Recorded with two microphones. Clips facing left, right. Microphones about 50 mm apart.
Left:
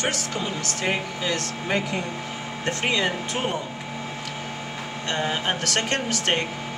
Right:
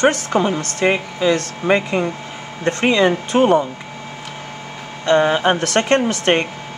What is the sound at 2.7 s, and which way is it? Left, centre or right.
Speech, right.